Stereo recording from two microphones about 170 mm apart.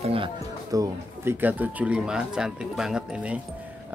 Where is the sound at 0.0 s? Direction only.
35° right (ahead or behind).